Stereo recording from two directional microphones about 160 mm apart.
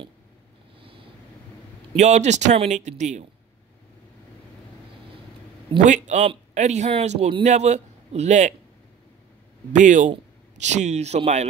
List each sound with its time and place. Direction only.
2.0 s speech: 45° right (ahead or behind)
5.9 s speech: 50° right (ahead or behind)
9.7 s speech: 50° right (ahead or behind)